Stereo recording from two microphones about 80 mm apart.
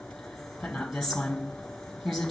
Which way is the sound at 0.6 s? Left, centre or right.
Centre.